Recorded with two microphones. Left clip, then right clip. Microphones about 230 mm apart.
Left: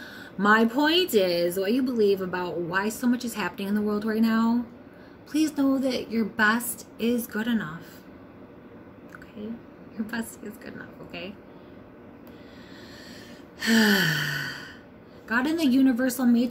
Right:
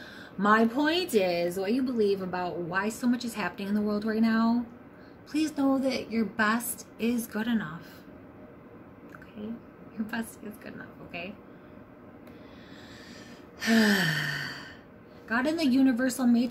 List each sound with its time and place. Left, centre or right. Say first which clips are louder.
0.2 s a woman's voice: left 3 dB; centre
10.1 s a woman's voice: left 2 dB; centre
13.6 s gasp: left 3 dB; centre
15.2 s a woman's voice: left 3 dB; centre